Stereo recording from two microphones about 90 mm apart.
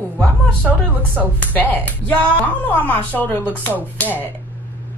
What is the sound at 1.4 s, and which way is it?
Speech, 20° left (ahead or behind).